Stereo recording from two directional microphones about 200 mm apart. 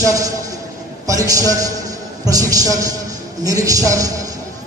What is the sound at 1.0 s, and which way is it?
A man's voice, 15° right (ahead or behind).